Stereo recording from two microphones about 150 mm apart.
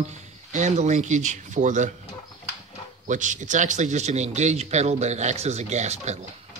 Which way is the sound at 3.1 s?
55° right (ahead or behind).